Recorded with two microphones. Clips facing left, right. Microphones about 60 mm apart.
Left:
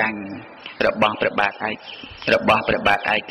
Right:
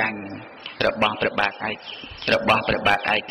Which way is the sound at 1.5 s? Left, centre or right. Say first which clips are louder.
Left 3 dB; left.